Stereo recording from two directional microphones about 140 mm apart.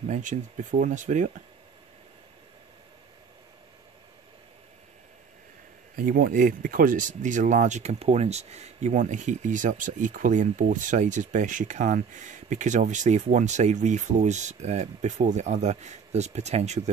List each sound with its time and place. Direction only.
0.1 s speech: 65° right (ahead or behind)
5.9 s speech: 85° right; by 16.9 s 55° right (ahead or behind)